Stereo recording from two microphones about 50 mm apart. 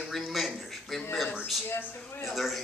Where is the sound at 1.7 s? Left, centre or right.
Left.